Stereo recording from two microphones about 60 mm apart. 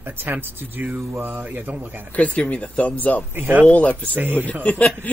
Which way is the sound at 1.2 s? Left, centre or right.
Right.